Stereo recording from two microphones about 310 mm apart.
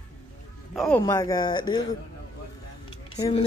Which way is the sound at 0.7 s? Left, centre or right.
Centre.